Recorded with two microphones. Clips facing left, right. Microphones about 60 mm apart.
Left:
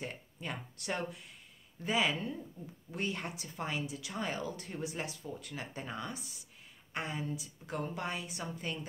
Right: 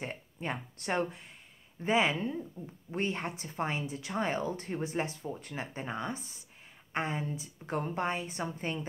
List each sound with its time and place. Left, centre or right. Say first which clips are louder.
0.0 s speech: right 4 dB; right